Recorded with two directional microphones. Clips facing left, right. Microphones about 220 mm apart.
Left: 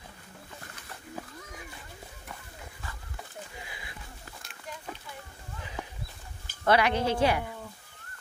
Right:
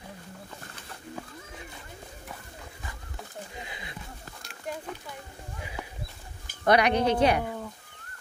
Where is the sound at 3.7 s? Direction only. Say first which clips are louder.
Right 4 dB; 20° right (ahead or behind).